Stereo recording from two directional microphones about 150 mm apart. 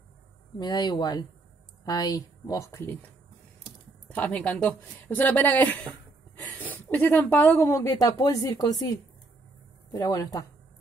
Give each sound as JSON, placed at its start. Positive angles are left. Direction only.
{"t": 0.6, "sound": "speech", "side_deg": 30}
{"t": 4.1, "sound": "speech", "side_deg": 10}
{"t": 9.9, "sound": "speech", "side_deg": 25}